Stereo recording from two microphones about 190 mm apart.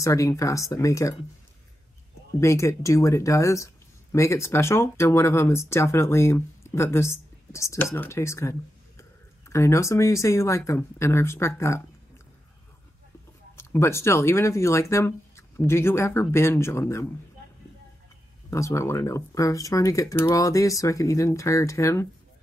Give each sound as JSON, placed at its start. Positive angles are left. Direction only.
{"t": 0.0, "sound": "speech", "side_deg": 15}
{"t": 2.4, "sound": "speech", "side_deg": 15}
{"t": 13.6, "sound": "speech", "side_deg": 15}
{"t": 18.5, "sound": "speech", "side_deg": 15}